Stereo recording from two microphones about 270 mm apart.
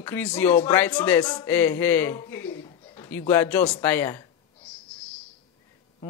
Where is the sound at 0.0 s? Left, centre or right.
Centre.